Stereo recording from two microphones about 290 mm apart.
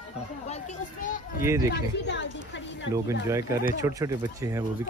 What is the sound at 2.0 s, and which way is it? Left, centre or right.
Speech, left.